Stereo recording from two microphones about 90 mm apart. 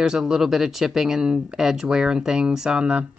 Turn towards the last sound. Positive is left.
turn(degrees=-10)  # may be behind; listen again after turning